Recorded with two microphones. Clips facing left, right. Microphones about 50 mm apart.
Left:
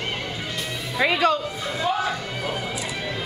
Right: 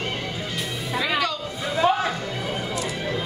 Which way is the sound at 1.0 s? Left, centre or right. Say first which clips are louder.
Left 5 dB; left.